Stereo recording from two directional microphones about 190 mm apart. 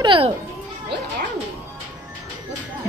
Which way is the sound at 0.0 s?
25° right (ahead or behind).